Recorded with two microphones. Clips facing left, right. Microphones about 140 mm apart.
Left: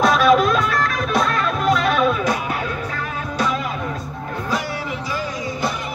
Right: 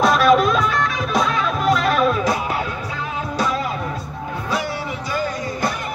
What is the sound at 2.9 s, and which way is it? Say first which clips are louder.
Music: right 1 dB; 20° right (ahead or behind).